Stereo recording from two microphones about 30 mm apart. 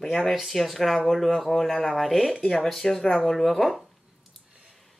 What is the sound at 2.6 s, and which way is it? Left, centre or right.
Speech, centre.